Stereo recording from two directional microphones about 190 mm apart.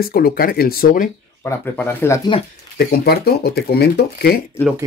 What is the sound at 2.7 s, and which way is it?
Speech, 55° left (ahead or behind).